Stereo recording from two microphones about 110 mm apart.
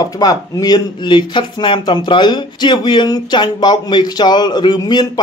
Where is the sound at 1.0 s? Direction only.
45° left (ahead or behind).